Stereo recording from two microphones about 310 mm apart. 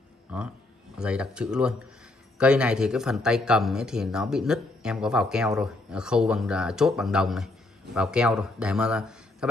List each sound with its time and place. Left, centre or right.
0.3 s speech: centre